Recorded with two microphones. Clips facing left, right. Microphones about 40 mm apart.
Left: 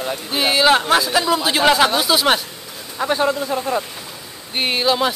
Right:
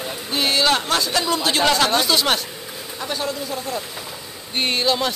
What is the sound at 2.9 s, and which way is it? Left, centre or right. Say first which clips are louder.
Speech: left 8 dB; left.